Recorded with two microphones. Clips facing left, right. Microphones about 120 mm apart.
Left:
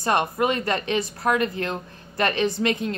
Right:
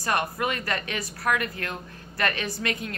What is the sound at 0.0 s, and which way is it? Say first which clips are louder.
Speech: left 5 dB; 25° left (ahead or behind).